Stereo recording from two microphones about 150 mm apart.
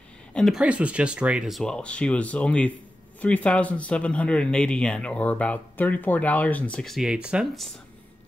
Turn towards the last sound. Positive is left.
turn(degrees=0)  # may be behind; listen again after turning